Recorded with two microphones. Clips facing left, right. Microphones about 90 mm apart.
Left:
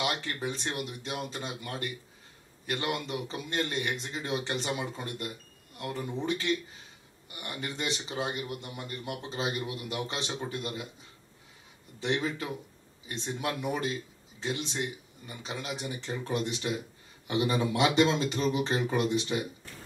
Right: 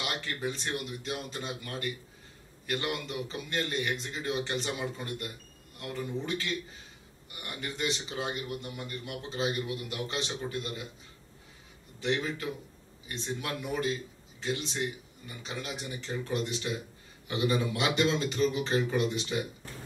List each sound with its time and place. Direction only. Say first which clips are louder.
0.0 s speech: left 2 dB; 30° left (ahead or behind)
12.0 s speech: left 1 dB; 30° left (ahead or behind)